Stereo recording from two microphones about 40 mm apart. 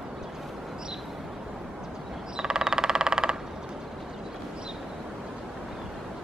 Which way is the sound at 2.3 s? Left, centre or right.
Centre.